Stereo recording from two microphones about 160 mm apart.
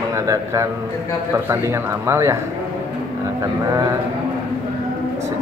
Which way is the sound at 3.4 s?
20° right (ahead or behind).